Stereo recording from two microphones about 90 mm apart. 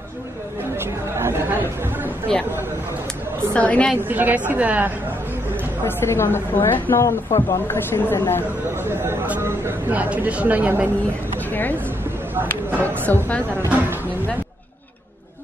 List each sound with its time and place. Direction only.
0.7 s speech: 30° right (ahead or behind)
2.3 s speech: 5° left (ahead or behind)
3.5 s a woman's voice: 15° left (ahead or behind)
4.1 s a woman's voice: 20° right (ahead or behind)
5.9 s a woman's voice: 25° left (ahead or behind)
8.8 s a woman's voice: 25° right (ahead or behind)
12.8 s a woman's voice: 20° left (ahead or behind)